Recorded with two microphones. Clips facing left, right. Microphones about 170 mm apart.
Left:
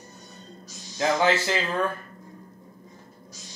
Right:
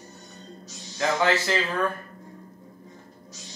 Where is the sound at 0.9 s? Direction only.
15° left (ahead or behind).